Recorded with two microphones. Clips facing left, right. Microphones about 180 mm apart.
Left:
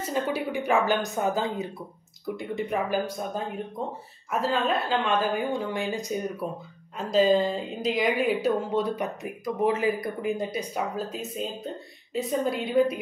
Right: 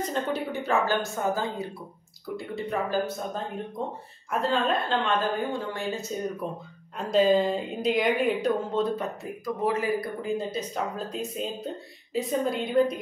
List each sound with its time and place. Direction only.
0.0 s a woman's voice: 10° left (ahead or behind)
4.3 s a woman's voice: 5° left (ahead or behind)
7.0 s a woman's voice: centre (ahead or behind)